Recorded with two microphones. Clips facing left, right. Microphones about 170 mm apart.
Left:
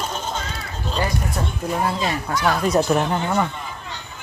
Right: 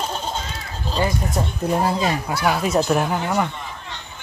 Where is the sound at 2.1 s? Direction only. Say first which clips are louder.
Even; 15° right (ahead or behind).